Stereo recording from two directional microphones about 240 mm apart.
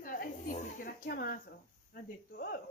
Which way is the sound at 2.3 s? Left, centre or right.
Left.